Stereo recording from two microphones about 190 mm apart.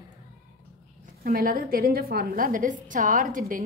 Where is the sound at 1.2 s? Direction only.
50° right (ahead or behind).